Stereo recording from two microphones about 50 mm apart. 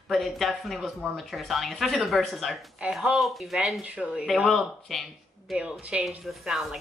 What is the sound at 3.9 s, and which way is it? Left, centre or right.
Speech, centre.